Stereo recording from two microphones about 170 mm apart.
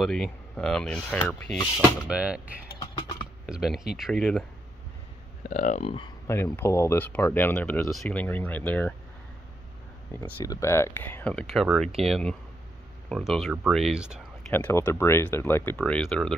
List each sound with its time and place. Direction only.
0.0 s speech: 5° left (ahead or behind)
2.0 s speech: 5° right (ahead or behind)
2.8 s a sound: 30° left (ahead or behind)
3.4 s speech: 5° right (ahead or behind)
5.4 s speech: 50° left (ahead or behind)
6.2 s speech: 15° left (ahead or behind)
10.4 s speech: 20° left (ahead or behind); by 14.2 s 5° right (ahead or behind)
14.5 s speech: 10° left (ahead or behind)